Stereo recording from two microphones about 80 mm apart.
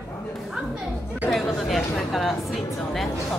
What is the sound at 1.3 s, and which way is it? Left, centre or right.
A woman's voice, centre.